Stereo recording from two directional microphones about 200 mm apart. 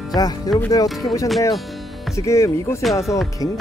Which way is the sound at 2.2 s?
15° left (ahead or behind).